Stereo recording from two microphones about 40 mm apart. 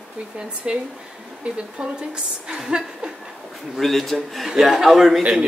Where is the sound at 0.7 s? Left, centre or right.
Right.